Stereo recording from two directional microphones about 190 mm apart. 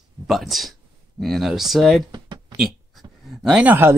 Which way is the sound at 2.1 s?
25° right (ahead or behind).